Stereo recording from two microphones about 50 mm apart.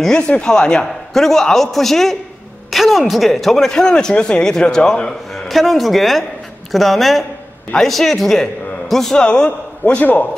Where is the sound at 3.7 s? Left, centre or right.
Centre.